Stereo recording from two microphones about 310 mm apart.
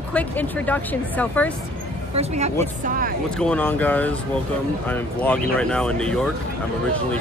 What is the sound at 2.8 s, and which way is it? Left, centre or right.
Speech, right.